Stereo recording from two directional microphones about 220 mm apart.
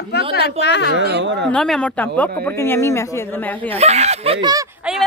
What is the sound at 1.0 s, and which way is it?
Speech, 50° right (ahead or behind).